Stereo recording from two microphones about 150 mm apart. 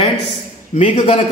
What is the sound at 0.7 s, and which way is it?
Speech, 50° left (ahead or behind).